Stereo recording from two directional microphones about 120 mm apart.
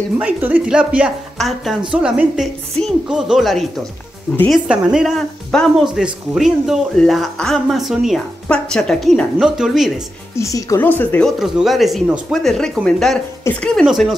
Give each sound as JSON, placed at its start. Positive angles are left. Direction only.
{"t": 0.2, "sound": "speech", "side_deg": -10}
{"t": 10.3, "sound": "a woman's voice", "side_deg": 25}
{"t": 10.8, "sound": "speech", "side_deg": 15}
{"t": 11.2, "sound": "speech", "side_deg": 0}